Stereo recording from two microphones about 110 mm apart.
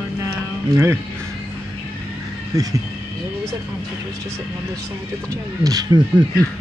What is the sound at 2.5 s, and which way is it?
Speech, 35° right (ahead or behind).